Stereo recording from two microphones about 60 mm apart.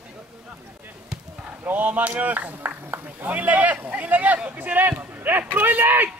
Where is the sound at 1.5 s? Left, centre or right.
Right.